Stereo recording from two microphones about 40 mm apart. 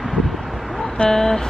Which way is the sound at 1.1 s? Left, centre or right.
Centre.